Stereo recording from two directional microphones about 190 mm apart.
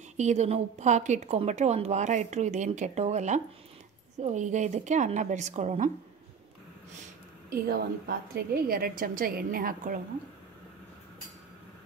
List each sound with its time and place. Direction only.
0.2 s a woman's voice: 35° right (ahead or behind)
7.4 s a woman's voice: 55° right (ahead or behind)